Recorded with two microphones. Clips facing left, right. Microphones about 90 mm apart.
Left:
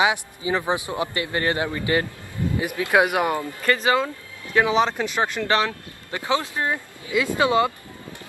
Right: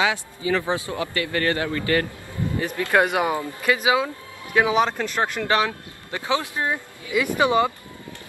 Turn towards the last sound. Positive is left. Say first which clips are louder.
# even
turn(degrees=-15)  # may be behind; listen again after turning